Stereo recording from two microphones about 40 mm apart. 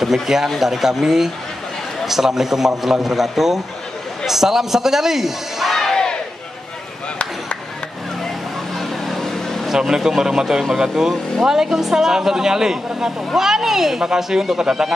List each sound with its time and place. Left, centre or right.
0.0 s speech: centre
5.8 s a sound: centre
8.7 s vehicle: centre
9.7 s speech: centre